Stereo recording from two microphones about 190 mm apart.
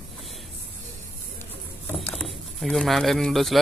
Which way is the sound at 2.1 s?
Centre (ahead or behind).